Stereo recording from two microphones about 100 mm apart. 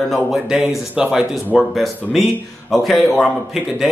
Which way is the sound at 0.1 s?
5° right (ahead or behind).